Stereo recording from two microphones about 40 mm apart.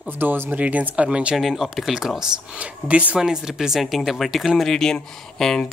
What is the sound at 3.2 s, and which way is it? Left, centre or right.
Speech, centre.